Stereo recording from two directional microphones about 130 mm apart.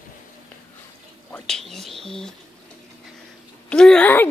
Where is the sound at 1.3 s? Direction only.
5° left (ahead or behind).